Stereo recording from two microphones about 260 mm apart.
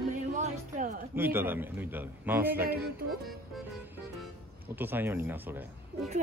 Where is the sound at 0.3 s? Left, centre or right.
Right.